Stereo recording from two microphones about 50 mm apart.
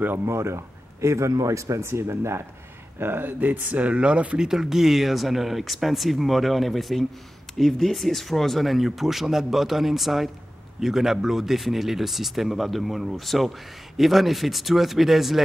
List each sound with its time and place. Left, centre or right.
0.2 s speech: right
1.0 s speech: right
3.0 s speech: right
4.5 s speech: centre